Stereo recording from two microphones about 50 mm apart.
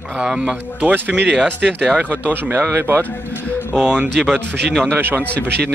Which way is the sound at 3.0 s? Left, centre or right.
Left.